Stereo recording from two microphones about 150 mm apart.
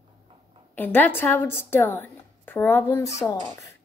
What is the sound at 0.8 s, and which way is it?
A woman's voice, 10° left (ahead or behind).